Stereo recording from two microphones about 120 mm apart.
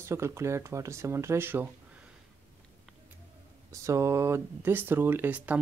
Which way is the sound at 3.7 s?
25° right (ahead or behind).